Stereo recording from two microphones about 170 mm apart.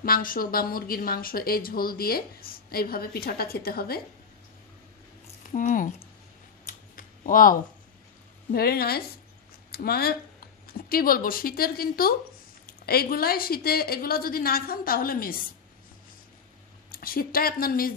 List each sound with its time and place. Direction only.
0.0 s a woman's voice: 55° left (ahead or behind)
5.5 s speech: 50° left (ahead or behind)
6.6 s scissors: 55° left (ahead or behind)
8.5 s a woman's voice: 65° left (ahead or behind)
16.9 s a woman's voice: 60° left (ahead or behind)